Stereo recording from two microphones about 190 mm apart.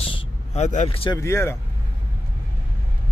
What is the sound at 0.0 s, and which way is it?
Vehicle, 30° left (ahead or behind).